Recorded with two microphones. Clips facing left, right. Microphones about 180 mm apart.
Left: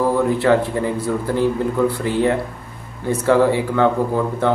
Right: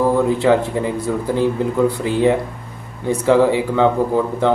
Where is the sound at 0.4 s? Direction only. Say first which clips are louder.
Right 1 dB; 15° right (ahead or behind).